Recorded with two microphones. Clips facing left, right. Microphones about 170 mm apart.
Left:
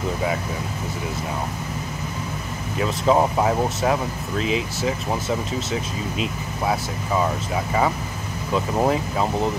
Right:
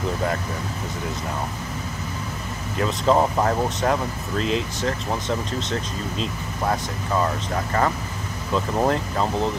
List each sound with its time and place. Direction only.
2.8 s speech: 5° left (ahead or behind)